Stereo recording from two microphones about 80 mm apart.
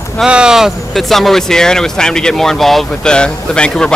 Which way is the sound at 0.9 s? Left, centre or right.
Centre.